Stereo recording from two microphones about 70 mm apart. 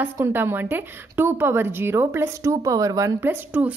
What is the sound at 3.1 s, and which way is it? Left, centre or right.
Speech, right.